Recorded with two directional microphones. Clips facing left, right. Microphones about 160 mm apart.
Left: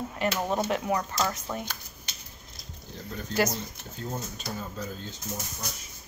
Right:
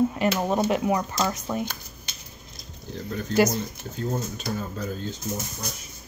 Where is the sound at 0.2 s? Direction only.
15° right (ahead or behind).